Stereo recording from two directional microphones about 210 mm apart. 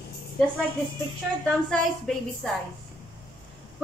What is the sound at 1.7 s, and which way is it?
Speech, centre (ahead or behind).